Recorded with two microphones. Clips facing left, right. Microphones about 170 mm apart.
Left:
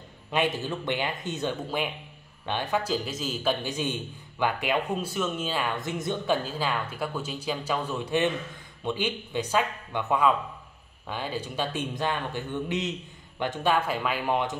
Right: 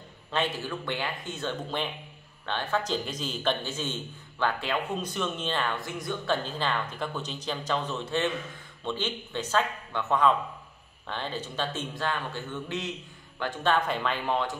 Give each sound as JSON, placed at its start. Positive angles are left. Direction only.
{"t": 0.3, "sound": "speech", "side_deg": 15}
{"t": 1.7, "sound": "a man's voice", "side_deg": 5}
{"t": 5.8, "sound": "a man's voice", "side_deg": 20}